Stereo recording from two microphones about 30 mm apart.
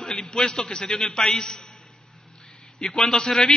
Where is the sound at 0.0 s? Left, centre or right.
Left.